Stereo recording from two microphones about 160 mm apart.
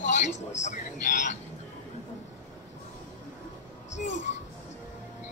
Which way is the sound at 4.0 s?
50° left (ahead or behind).